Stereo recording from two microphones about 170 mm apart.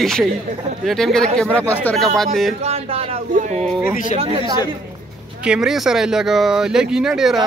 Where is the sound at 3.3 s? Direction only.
45° right (ahead or behind).